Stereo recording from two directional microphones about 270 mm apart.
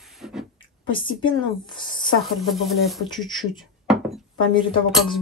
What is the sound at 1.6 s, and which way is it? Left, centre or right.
Speech, centre.